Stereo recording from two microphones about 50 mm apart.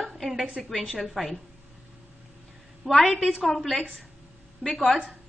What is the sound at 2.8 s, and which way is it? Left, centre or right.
Speech, centre.